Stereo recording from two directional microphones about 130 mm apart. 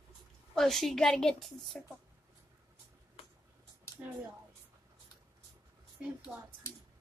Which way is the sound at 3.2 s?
45° left (ahead or behind).